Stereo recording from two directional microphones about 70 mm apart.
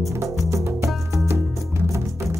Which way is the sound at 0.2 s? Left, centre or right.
Right.